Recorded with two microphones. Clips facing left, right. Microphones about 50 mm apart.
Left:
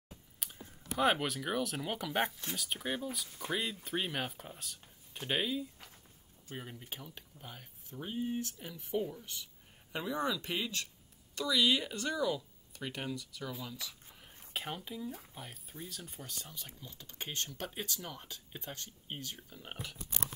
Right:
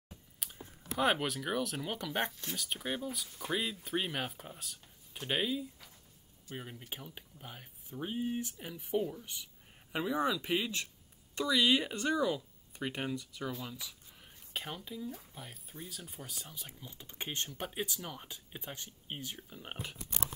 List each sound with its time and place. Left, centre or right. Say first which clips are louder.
0.4 s speech: right 1 dB; centre
11.3 s speech: right 2 dB; right
13.6 s speech: even; centre
14.5 s speech: left 1 dB; centre
17.0 s speech: right 1 dB; centre
17.6 s speech: right 2 dB; centre